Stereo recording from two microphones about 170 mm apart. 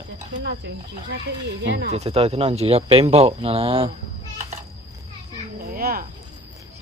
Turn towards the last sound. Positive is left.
turn(degrees=-60)  # may be behind; listen again after turning